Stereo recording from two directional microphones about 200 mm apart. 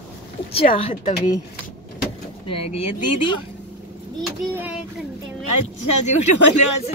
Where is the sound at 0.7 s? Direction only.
25° left (ahead or behind).